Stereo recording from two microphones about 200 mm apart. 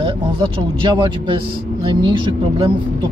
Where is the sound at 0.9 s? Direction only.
25° right (ahead or behind).